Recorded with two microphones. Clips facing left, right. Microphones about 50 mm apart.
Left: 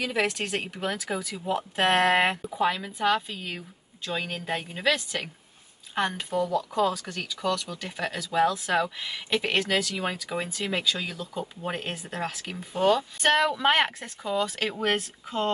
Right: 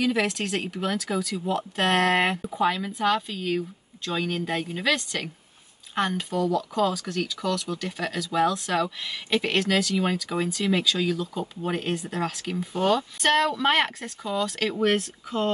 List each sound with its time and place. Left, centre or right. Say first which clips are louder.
0.0 s speech: right 3 dB; centre
7.4 s speech: right 1 dB; centre